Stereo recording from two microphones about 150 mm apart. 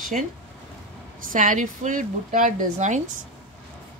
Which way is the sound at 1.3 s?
60° right (ahead or behind).